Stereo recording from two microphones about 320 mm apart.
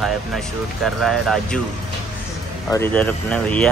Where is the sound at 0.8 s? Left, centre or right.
Centre.